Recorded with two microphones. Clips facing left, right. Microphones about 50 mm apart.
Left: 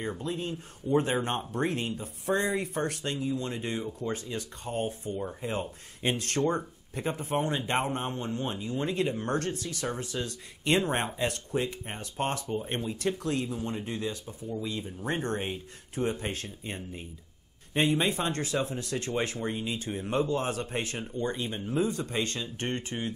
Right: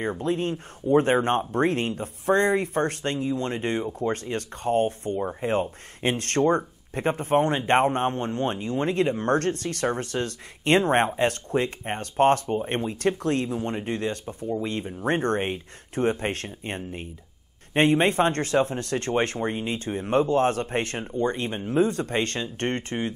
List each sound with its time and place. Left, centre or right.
0.0 s speech: right
5.2 s speech: right
6.1 s speech: right